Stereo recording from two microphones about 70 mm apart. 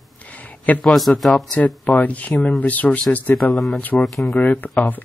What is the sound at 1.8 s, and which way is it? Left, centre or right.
Speech, left.